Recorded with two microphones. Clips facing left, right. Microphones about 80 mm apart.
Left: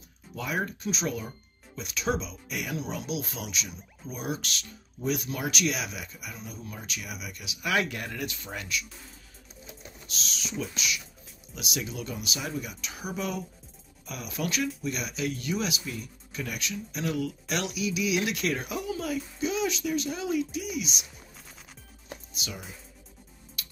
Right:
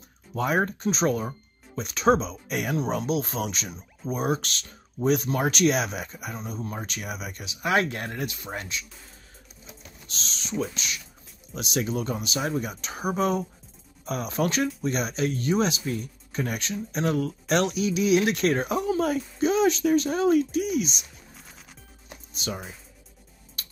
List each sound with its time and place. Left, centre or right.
0.3 s speech: right
10.0 s speech: right
22.3 s music: right
23.6 s a sound: right